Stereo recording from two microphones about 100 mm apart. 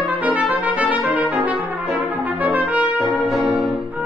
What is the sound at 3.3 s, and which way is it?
Music, centre (ahead or behind).